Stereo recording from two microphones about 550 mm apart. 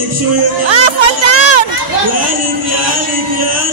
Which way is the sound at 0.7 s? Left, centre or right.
Right.